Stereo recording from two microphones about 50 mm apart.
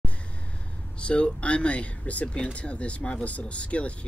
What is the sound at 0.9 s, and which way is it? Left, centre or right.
Speech, left.